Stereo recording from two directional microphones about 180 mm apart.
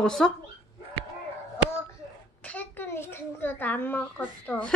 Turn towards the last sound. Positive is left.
turn(degrees=5)  # may be behind; listen again after turning